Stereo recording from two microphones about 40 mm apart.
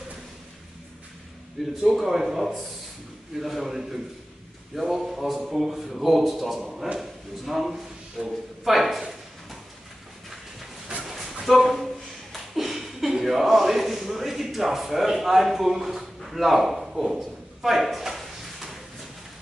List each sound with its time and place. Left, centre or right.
1.8 s a man's voice: centre
8.2 s speech: right
8.6 s a man's voice: centre
11.1 s a sound: centre